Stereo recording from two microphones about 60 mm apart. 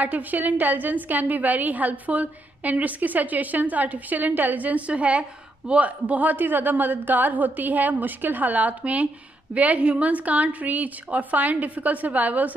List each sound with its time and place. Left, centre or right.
0.0 s a man's voice: right